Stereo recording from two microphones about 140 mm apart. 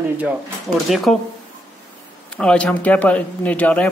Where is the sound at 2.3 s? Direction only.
5° left (ahead or behind).